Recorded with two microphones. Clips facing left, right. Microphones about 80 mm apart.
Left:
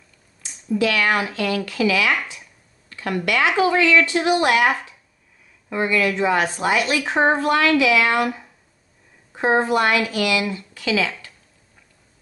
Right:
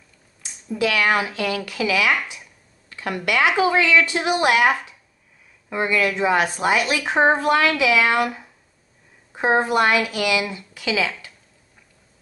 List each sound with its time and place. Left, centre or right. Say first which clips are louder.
0.7 s speech: even; centre
2.9 s a sound: left 2 dB; centre
3.3 s speech: even; centre